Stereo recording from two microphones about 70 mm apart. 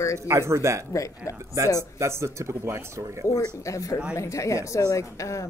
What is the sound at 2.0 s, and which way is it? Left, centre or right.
Speech, right.